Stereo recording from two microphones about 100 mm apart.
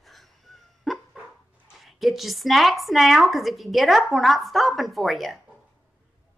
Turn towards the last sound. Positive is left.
turn(degrees=0)  # may be behind; listen again after turning